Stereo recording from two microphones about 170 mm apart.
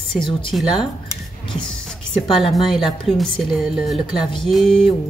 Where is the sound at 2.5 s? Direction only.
Centre (ahead or behind).